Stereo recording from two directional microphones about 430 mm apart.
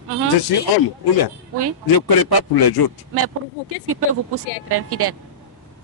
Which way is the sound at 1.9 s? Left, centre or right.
Left.